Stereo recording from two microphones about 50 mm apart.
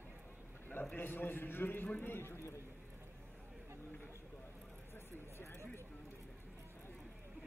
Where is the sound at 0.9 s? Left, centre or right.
Left.